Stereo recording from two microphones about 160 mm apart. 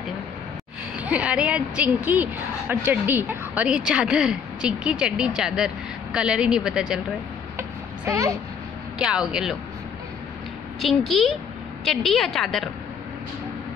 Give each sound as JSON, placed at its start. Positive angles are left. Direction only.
{"t": 0.9, "sound": "a woman's voice", "side_deg": -10}
{"t": 7.5, "sound": "a sound", "side_deg": -15}
{"t": 8.9, "sound": "a woman's voice", "side_deg": -5}
{"t": 10.8, "sound": "a woman's voice", "side_deg": 0}